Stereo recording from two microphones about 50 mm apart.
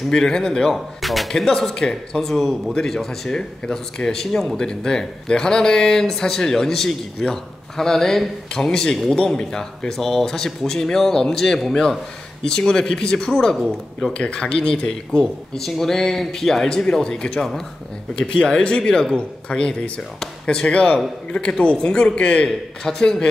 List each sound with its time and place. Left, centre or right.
0.1 s speech: centre